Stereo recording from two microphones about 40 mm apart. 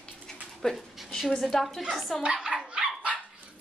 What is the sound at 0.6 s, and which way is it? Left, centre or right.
Speech, centre.